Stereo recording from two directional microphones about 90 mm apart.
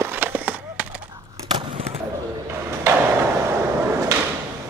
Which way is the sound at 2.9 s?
30° right (ahead or behind).